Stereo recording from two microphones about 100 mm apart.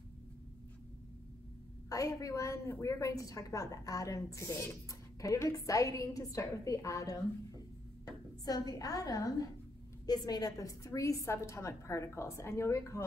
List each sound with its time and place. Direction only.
1.9 s a woman's voice: 35° left (ahead or behind)